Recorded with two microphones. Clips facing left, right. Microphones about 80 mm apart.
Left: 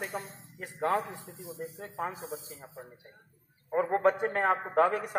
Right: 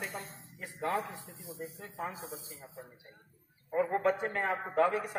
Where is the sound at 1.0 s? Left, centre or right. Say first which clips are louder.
Left 3 dB; centre.